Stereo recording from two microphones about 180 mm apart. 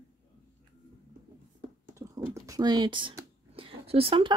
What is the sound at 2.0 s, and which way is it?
Typing, 15° right (ahead or behind).